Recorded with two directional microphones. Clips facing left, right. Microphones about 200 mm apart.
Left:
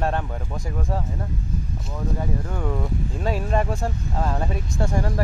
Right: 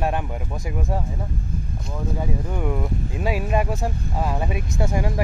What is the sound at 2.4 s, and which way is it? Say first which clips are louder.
Speech: right 1 dB; 10° right (ahead or behind).